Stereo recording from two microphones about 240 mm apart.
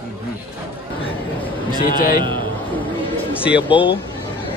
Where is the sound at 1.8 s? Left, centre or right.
Left.